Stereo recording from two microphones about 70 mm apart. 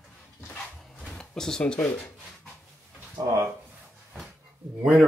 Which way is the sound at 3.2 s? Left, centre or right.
Right.